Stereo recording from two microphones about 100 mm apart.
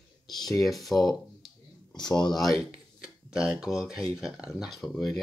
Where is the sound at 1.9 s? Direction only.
45° left (ahead or behind).